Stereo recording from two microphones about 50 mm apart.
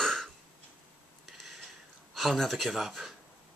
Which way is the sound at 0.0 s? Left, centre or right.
Centre.